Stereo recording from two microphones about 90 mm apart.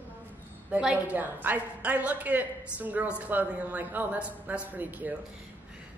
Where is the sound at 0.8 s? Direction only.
15° right (ahead or behind).